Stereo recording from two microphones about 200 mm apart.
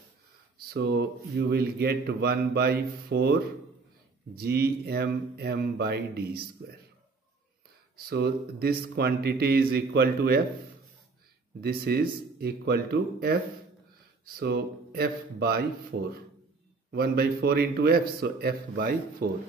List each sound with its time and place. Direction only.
0.7 s speech: 55° right (ahead or behind)
4.4 s speech: 50° right (ahead or behind)
7.9 s speech: 50° right (ahead or behind)
11.6 s speech: 50° right (ahead or behind)
14.4 s speech: 55° right (ahead or behind)
15.9 s speech: 60° right (ahead or behind)
16.9 s speech: 50° right (ahead or behind)